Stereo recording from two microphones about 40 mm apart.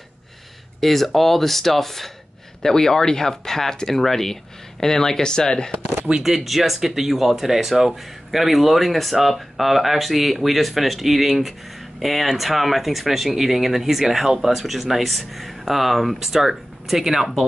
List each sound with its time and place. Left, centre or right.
0.7 s speech: centre; by 5.8 s left
5.9 s speech: right
6.2 s speech: centre